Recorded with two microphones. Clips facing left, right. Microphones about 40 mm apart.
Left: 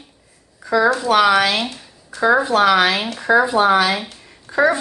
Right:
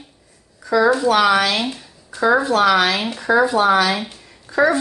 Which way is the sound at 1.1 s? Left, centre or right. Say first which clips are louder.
Left 1 dB; centre.